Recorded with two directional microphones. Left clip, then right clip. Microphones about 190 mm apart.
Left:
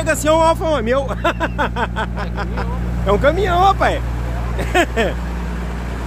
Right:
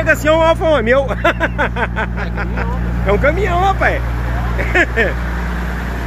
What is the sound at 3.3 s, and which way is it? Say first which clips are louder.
Speech: left 1 dB; 35° left (ahead or behind).